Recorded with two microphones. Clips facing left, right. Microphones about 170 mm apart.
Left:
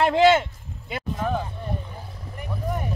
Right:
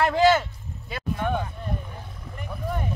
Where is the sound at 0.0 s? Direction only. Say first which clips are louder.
Left 2 dB; 25° left (ahead or behind).